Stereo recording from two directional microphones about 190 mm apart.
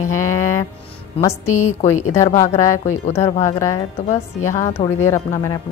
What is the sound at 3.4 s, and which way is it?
Speech, 15° left (ahead or behind).